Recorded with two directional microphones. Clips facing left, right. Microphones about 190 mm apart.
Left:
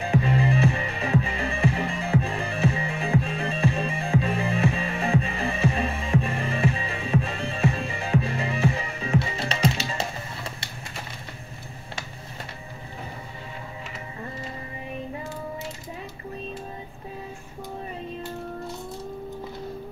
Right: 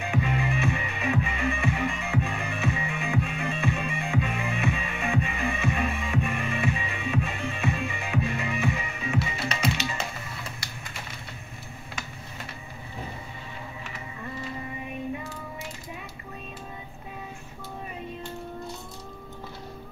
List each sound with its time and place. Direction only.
0.0 s music: 30° left (ahead or behind)